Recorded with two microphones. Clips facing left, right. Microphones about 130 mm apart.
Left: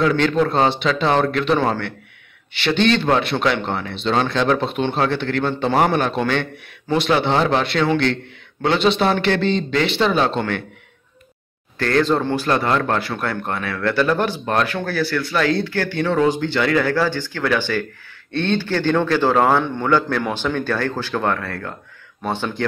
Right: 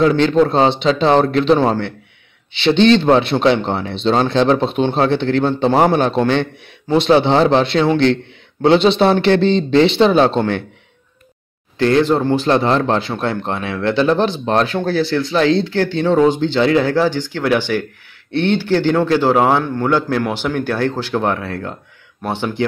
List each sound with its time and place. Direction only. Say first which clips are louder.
0.0 s speech: right 5 dB; 30° right (ahead or behind)
11.8 s speech: right 4 dB; 15° right (ahead or behind)
12.4 s speech: right 4 dB; 25° right (ahead or behind)